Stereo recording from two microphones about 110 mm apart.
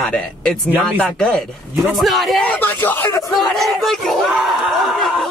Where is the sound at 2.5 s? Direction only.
20° left (ahead or behind).